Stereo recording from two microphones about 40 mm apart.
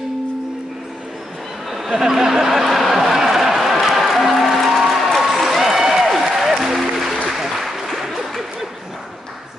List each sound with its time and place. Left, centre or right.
2.0 s a sound: centre
6.6 s music: centre
7.2 s applause: centre